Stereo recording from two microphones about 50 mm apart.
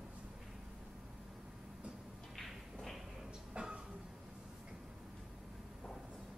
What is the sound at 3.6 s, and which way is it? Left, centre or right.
Train, right.